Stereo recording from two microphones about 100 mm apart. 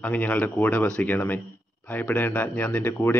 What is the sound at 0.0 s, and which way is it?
A man's voice, 15° left (ahead or behind).